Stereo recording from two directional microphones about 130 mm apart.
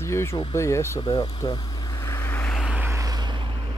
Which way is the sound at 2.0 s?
20° left (ahead or behind).